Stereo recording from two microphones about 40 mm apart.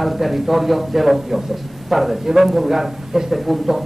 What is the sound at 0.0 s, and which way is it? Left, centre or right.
A man's voice, centre.